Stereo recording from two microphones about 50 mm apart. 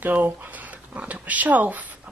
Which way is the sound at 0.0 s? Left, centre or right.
Right.